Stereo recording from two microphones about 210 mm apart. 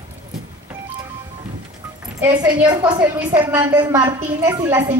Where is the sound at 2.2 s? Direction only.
10° right (ahead or behind).